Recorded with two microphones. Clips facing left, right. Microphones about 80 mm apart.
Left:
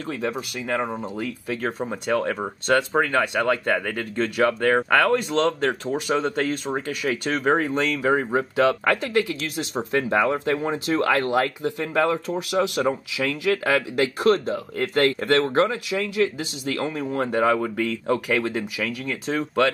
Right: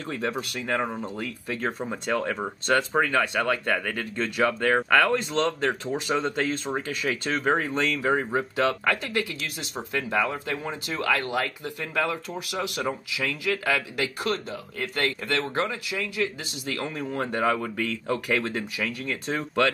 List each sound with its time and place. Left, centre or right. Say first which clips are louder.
0.0 s speech: left 2 dB; centre
8.0 s speech: left 5 dB; centre
8.5 s speech: left 5 dB; centre; by 15.5 s left
15.7 s speech: left 6 dB; left